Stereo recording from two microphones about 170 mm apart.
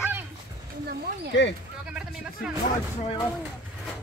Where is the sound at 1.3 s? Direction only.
90° left.